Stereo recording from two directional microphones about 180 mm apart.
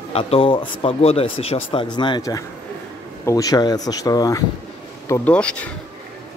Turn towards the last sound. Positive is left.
turn(degrees=5)  # may be behind; listen again after turning